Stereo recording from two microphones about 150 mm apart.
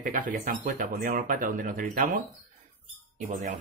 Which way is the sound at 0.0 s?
65° right (ahead or behind).